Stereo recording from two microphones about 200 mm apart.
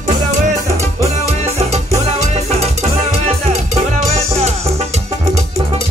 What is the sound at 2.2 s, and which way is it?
Music, 30° right (ahead or behind).